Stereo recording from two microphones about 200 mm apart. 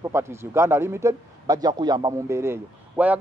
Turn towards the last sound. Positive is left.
turn(degrees=-5)  # may be behind; listen again after turning